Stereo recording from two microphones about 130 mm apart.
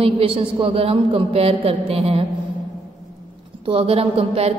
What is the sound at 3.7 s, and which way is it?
Speech, 45° right (ahead or behind).